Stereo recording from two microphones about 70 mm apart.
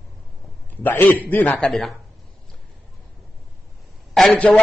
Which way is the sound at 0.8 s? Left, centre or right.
Left.